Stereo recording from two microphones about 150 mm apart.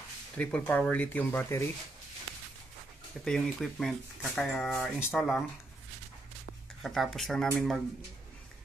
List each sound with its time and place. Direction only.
0.4 s speech: 10° left (ahead or behind)
3.3 s speech: 5° left (ahead or behind)
6.8 s speech: centre (ahead or behind)